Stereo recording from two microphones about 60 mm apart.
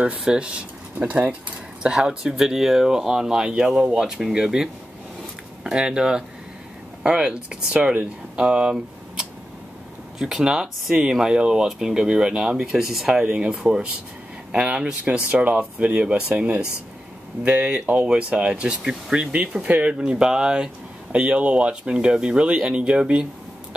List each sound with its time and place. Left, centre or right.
0.2 s speech: centre
1.8 s speech: centre
8.4 s a sound: centre
10.1 s speech: centre
20.0 s speech: centre